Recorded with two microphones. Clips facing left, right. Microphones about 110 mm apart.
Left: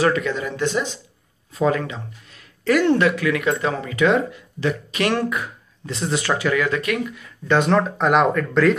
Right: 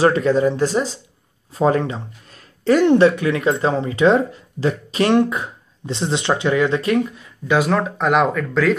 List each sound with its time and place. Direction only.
0.0 s speech: 35° right (ahead or behind)
2.6 s speech: 25° right (ahead or behind)
7.4 s speech: 5° right (ahead or behind)